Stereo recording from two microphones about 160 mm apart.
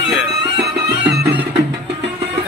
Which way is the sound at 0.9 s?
90° right.